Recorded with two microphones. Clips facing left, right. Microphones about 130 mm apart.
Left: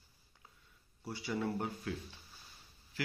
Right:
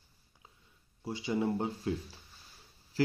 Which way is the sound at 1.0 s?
20° right (ahead or behind).